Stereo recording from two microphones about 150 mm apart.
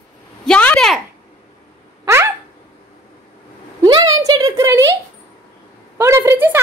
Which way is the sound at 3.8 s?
25° right (ahead or behind).